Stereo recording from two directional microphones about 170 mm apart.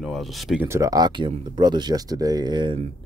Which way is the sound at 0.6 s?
15° right (ahead or behind).